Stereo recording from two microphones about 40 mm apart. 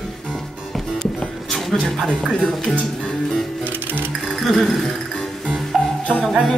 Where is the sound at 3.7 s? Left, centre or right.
Right.